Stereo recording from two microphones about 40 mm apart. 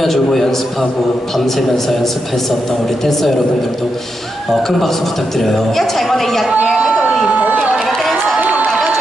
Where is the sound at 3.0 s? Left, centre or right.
Centre.